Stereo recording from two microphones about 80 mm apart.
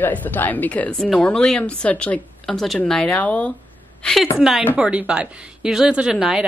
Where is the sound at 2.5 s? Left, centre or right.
Centre.